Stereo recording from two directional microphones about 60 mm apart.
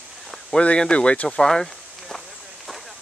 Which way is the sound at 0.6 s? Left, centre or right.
Centre.